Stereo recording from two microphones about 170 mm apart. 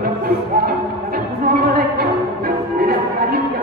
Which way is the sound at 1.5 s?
70° right (ahead or behind).